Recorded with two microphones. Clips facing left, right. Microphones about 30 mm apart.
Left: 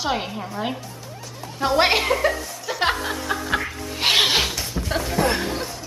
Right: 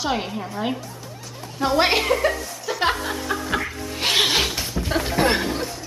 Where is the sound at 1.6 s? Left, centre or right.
Centre.